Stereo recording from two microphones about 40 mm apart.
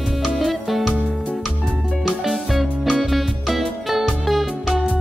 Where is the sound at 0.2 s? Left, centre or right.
Centre.